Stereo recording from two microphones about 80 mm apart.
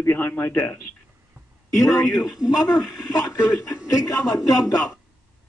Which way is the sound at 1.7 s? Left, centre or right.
Left.